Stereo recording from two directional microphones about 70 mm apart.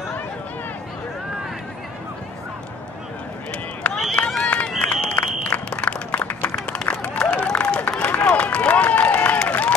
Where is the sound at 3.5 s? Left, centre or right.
Centre.